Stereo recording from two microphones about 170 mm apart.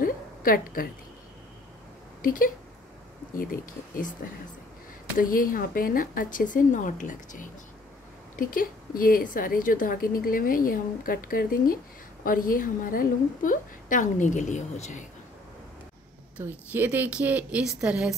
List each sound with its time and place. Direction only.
0.0 s a sound: 55° left (ahead or behind)
2.2 s a woman's voice: 55° left (ahead or behind)
5.2 s a woman's voice: 55° left (ahead or behind)
16.3 s a woman's voice: 10° right (ahead or behind)